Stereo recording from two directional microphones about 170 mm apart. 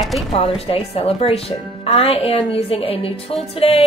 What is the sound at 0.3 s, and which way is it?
Speech, 35° left (ahead or behind).